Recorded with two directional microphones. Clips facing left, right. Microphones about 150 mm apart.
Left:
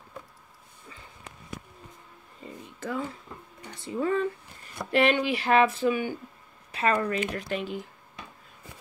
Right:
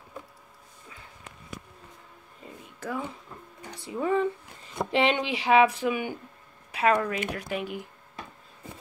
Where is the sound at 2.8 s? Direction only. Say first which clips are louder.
Left 1 dB; 10° right (ahead or behind).